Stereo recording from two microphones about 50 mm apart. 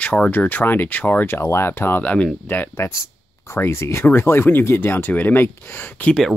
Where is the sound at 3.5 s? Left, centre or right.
Left.